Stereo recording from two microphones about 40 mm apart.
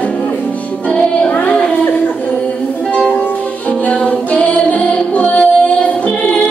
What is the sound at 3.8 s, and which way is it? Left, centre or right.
Music, left.